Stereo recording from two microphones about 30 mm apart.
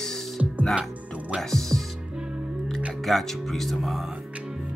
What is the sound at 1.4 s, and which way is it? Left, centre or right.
Speech, centre.